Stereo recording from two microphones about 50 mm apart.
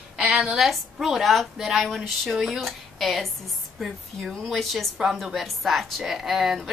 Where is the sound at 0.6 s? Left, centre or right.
Centre.